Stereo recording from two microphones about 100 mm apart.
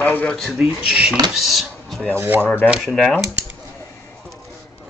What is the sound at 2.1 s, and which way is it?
Speech, 20° right (ahead or behind).